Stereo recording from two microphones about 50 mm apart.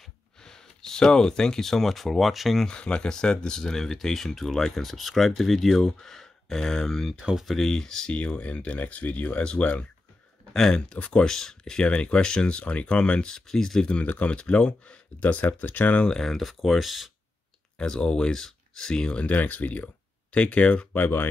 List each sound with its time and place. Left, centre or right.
0.4 s speech: centre
2.6 s speech: centre
7.2 s speech: centre
7.4 s speech: centre
8.1 s speech: left
10.5 s speech: centre
10.9 s speech: left
11.2 s speech: centre
13.8 s speech: left
15.2 s speech: left
16.0 s speech: centre
17.7 s speech: centre
19.1 s speech: left